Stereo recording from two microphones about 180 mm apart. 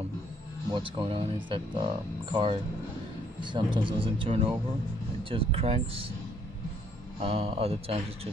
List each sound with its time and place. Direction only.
0.7 s speech: 30° right (ahead or behind)
7.2 s speech: 30° right (ahead or behind)